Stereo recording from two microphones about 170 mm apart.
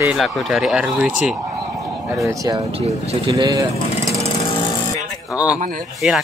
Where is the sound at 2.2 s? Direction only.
20° right (ahead or behind).